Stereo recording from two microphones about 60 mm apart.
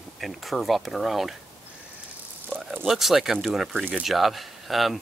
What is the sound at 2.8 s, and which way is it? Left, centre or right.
Speech, centre.